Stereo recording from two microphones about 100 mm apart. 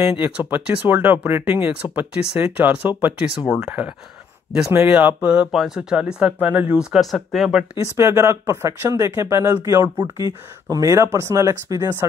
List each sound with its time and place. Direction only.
0.2 s speech: 15° right (ahead or behind)
8.0 s speech: 30° right (ahead or behind)